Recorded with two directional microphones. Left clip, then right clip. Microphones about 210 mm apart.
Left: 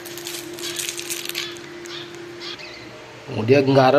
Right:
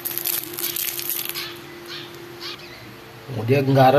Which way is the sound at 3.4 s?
10° left (ahead or behind).